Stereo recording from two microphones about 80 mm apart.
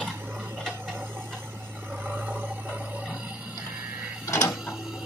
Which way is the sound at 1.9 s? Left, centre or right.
Right.